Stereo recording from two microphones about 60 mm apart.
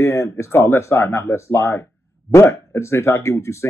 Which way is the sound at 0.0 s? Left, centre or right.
Left.